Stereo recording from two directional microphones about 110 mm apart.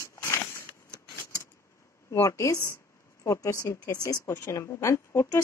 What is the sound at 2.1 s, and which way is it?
Speech, 30° left (ahead or behind).